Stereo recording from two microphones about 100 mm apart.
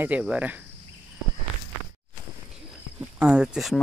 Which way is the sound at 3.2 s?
10° right (ahead or behind).